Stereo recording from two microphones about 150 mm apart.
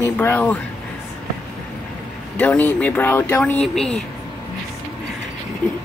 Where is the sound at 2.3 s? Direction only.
10° left (ahead or behind).